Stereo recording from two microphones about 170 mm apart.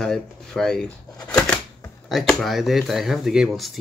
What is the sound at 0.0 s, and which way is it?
Speech, centre (ahead or behind).